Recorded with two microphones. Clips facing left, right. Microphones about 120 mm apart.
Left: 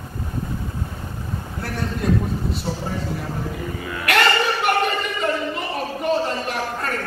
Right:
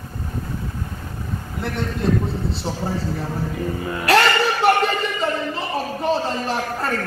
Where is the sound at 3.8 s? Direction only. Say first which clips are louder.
Right 4 dB; 35° right (ahead or behind).